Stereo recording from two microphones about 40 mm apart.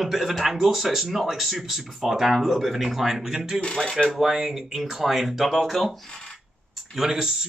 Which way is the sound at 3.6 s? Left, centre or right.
Left.